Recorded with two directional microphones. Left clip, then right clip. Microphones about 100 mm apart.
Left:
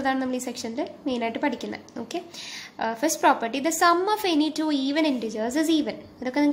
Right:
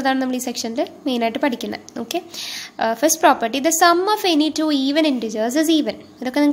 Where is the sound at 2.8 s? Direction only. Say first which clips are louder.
Right 8 dB; 45° right (ahead or behind).